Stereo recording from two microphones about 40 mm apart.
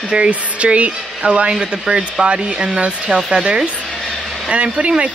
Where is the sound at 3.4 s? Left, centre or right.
Right.